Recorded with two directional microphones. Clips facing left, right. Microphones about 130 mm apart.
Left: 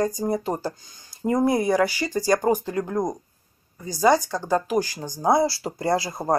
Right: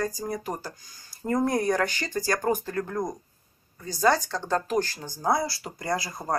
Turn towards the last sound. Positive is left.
turn(degrees=25)  # may be behind; listen again after turning